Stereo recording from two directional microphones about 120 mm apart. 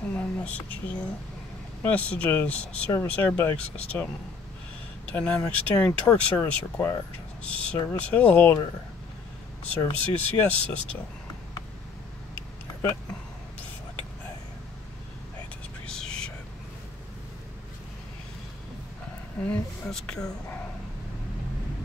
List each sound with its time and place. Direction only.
0.1 s speech: 15° left (ahead or behind)
5.1 s speech: 10° left (ahead or behind)
9.9 s speech: 10° left (ahead or behind)
15.9 s whispering: 5° left (ahead or behind)
19.4 s speech: 10° left (ahead or behind)